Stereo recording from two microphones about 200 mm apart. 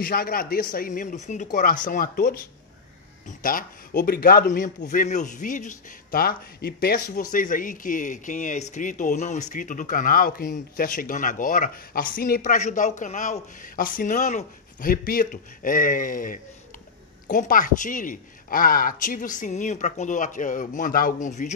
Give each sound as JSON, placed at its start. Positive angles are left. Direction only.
{"t": 0.0, "sound": "a man's voice", "side_deg": 50}